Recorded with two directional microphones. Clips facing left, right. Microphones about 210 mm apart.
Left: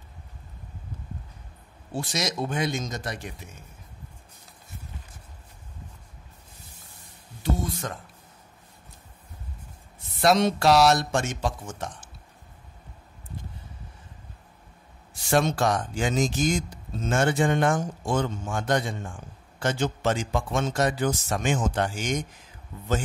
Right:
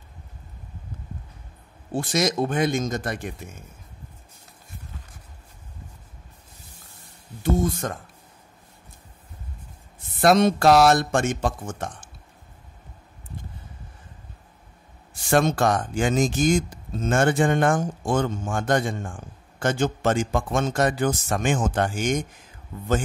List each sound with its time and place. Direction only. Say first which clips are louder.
2.0 s speech: right 6 dB; 50° right (ahead or behind)
7.4 s speech: right 6 dB; 45° right (ahead or behind)
10.2 s speech: right 3 dB; 50° right (ahead or behind)
15.2 s speech: right 3 dB; 50° right (ahead or behind)